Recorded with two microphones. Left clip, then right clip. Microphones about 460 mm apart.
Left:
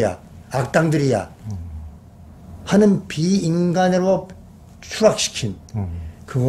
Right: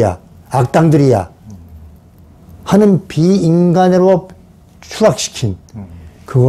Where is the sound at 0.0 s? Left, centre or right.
Right.